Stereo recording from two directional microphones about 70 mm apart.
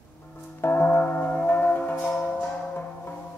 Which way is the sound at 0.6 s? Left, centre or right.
Left.